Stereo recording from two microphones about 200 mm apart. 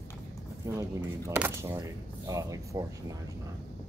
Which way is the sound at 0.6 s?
15° right (ahead or behind).